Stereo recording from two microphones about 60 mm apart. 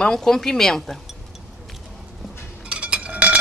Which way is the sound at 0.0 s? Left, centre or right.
Centre.